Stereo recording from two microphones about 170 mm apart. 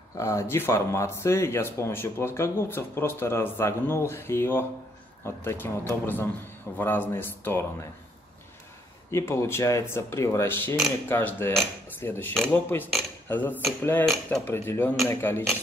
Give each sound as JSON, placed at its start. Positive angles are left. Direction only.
{"t": 0.1, "sound": "speech", "side_deg": 20}
{"t": 9.1, "sound": "speech", "side_deg": 15}